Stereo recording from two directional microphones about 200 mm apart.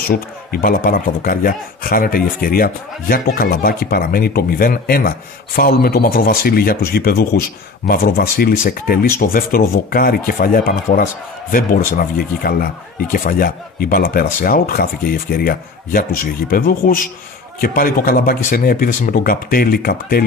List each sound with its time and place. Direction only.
0.0 s speech: 45° left (ahead or behind)